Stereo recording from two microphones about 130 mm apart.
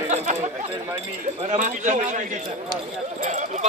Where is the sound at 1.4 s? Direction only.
75° right (ahead or behind).